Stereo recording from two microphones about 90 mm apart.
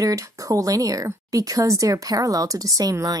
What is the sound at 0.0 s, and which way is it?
Speech, 40° right (ahead or behind).